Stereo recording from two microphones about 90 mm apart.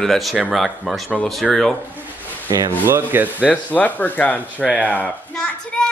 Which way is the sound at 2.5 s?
45° right (ahead or behind).